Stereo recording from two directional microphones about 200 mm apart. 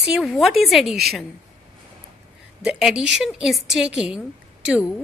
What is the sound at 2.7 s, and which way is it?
Speech, centre (ahead or behind).